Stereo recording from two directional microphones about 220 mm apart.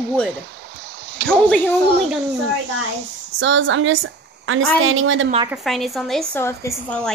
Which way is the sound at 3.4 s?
60° right (ahead or behind).